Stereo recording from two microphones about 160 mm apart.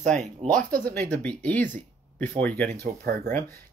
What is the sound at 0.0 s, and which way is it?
Speech, 45° right (ahead or behind).